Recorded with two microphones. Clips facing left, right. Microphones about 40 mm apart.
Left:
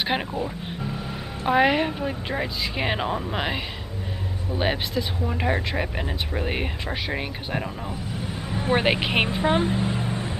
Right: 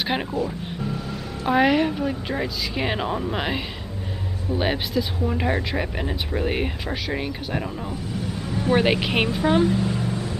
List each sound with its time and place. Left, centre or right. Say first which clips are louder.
0.0 s speech: even; centre
1.4 s speech: right 1 dB; centre
8.4 s a sound: right 2 dB; left
8.7 s speech: right 1 dB; centre